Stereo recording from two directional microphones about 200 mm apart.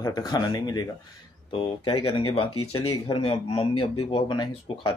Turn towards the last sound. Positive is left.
turn(degrees=25)  # may be behind; listen again after turning